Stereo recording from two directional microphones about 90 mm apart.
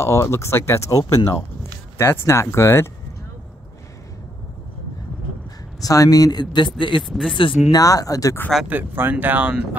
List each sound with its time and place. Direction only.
0.0 s speech: 35° left (ahead or behind)
5.8 s speech: 40° left (ahead or behind)
6.5 s a man's voice: 60° left (ahead or behind)
7.7 s speech: 40° left (ahead or behind)
8.6 s speech: 20° right (ahead or behind)